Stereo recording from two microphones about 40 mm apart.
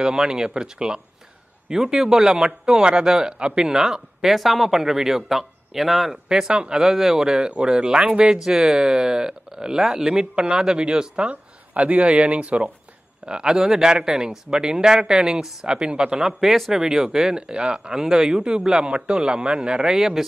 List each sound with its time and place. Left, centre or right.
0.0 s a man's voice: centre
6.2 s speech: centre
7.2 s a man's voice: right
8.5 s a man's voice: centre
13.3 s a man's voice: centre
17.9 s a man's voice: centre
19.8 s speech: centre